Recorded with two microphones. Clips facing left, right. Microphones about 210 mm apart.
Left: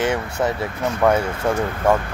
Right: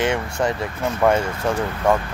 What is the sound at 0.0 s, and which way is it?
Speech, 5° left (ahead or behind).